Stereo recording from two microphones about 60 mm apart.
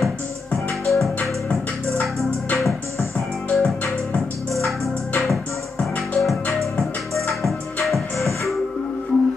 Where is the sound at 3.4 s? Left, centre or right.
Left.